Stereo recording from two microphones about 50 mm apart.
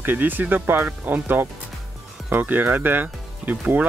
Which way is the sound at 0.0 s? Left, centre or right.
Right.